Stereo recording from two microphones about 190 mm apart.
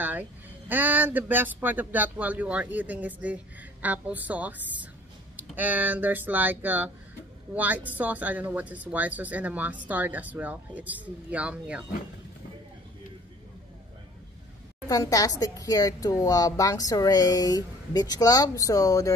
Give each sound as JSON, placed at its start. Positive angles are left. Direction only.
{"t": 0.0, "sound": "speech", "side_deg": -10}
{"t": 14.9, "sound": "a woman's voice", "side_deg": 20}